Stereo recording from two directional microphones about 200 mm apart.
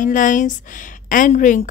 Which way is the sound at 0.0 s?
40° left (ahead or behind).